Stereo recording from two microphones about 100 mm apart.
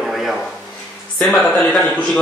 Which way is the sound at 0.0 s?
Centre (ahead or behind).